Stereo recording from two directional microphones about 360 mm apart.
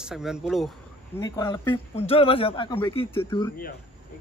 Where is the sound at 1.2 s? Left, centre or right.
Centre.